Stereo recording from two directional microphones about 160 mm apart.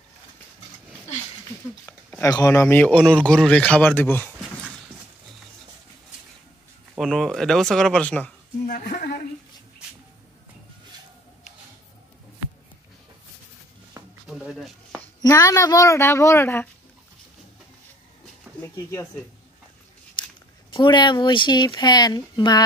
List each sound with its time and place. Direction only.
2.2 s speech: 20° left (ahead or behind)
7.0 s speech: centre (ahead or behind)
8.6 s speech: 65° left (ahead or behind)
14.2 s a sound: 5° right (ahead or behind)
15.2 s speech: 20° left (ahead or behind)
18.5 s a sound: 10° right (ahead or behind)
20.7 s speech: 30° left (ahead or behind)